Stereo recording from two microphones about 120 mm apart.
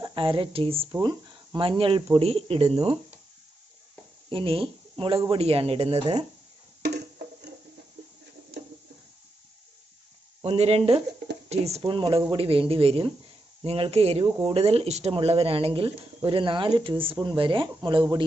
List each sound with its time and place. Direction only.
0.0 s speech: 45° right (ahead or behind)
4.3 s speech: 45° right (ahead or behind)
10.4 s speech: 55° right (ahead or behind)
11.8 s speech: 45° right (ahead or behind)